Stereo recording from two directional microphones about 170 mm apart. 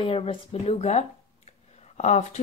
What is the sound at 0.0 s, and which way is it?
Speech, 35° left (ahead or behind).